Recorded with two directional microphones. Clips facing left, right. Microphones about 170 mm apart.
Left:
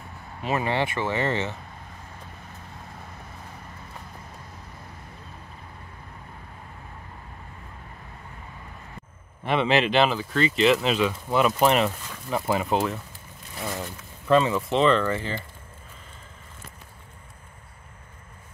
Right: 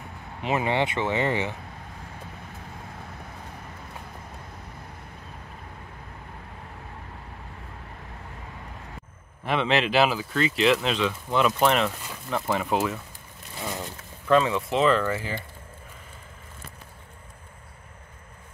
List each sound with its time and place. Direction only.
0.4 s speech: 20° right (ahead or behind)
9.4 s speech: centre (ahead or behind)